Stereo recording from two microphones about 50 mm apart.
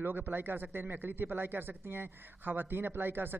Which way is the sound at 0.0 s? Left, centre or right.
Right.